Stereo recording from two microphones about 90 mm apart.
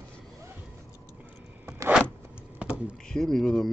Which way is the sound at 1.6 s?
25° right (ahead or behind).